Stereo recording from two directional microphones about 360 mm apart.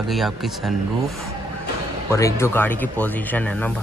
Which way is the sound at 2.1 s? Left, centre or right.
Centre.